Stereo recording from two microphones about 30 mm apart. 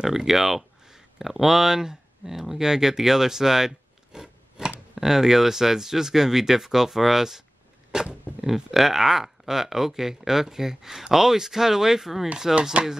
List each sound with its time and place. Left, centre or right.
0.0 s speech: centre
8.4 s speech: centre
12.8 s speech: right